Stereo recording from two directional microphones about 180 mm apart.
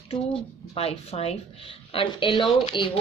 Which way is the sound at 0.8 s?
35° left (ahead or behind).